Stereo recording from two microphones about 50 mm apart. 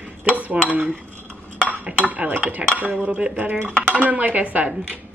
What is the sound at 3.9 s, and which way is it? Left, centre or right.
Dishes, right.